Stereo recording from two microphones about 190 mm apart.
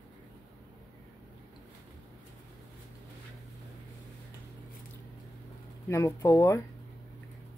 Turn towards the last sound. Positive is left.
turn(degrees=15)  # may be behind; listen again after turning